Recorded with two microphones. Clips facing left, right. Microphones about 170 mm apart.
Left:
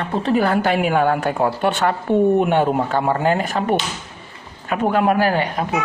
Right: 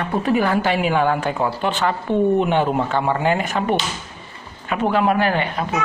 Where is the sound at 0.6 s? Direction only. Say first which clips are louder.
Left 1 dB; 50° left (ahead or behind).